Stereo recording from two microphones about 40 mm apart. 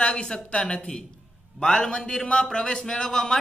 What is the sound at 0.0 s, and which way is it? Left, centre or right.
A man's voice, left.